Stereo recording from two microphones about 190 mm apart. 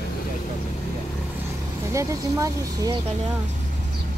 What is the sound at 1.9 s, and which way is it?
Speech, 15° right (ahead or behind).